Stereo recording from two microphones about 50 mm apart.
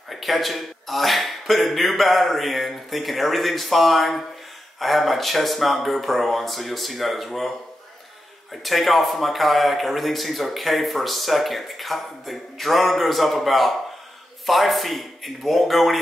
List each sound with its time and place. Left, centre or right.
0.1 s a man's voice: centre
8.6 s a man's voice: centre